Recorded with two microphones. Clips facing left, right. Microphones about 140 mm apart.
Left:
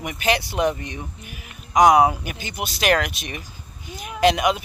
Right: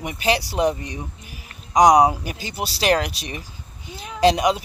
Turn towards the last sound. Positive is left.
turn(degrees=-35)  # may be behind; listen again after turning